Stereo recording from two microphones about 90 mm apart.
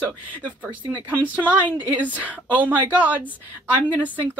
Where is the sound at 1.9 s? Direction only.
15° right (ahead or behind).